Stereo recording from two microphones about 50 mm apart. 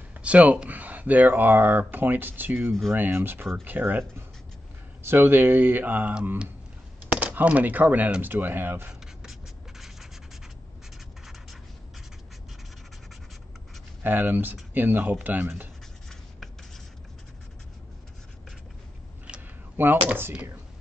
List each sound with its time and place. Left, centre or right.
0.2 s speech: right
5.0 s speech: right
7.2 s speech: right
9.0 s scratch: centre
14.0 s speech: right
19.8 s speech: right